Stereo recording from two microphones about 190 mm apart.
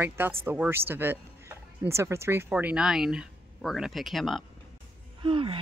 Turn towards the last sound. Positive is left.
turn(degrees=-25)  # may be behind; listen again after turning